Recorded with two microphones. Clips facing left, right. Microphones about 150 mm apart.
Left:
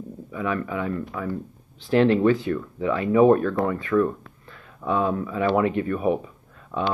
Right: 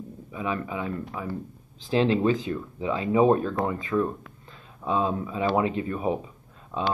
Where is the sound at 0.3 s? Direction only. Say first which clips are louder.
Left 3 dB; 20° right (ahead or behind).